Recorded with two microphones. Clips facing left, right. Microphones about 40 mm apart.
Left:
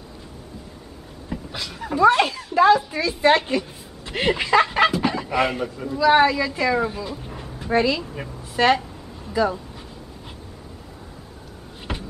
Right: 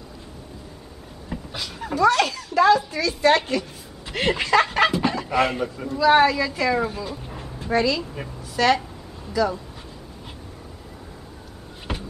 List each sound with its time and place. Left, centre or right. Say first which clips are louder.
1.3 s a sound: left 1 dB; centre
2.0 s a child's voice: left 2 dB; left
2.9 s chicken: left 1 dB; left; by 4.9 s centre
5.0 s a man's voice: even; centre
7.7 s a child's voice: left 1 dB; left
8.0 s a woman's voice: even; centre
8.6 s a child's voice: left 1 dB; left